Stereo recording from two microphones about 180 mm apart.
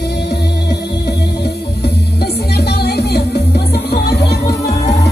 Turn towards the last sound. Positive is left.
turn(degrees=65)  # may be behind; listen again after turning